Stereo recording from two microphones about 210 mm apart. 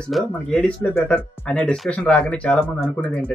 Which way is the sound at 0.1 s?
5° left (ahead or behind).